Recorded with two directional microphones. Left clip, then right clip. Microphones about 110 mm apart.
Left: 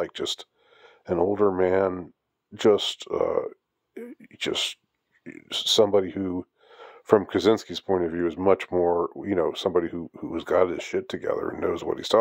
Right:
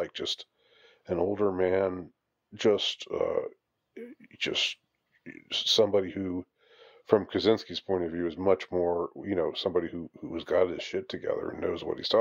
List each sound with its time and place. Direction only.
0.0 s speech: 35° left (ahead or behind)